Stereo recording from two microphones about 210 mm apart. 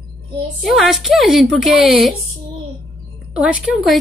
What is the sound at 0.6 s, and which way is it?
A woman's voice, centre (ahead or behind).